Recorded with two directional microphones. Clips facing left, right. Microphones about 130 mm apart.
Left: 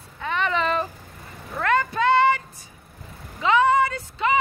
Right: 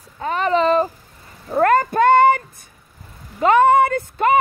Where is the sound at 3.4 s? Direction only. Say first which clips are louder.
Right 6 dB; 50° right (ahead or behind).